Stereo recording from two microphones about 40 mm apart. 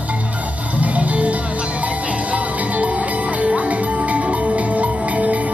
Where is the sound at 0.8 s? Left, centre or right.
Right.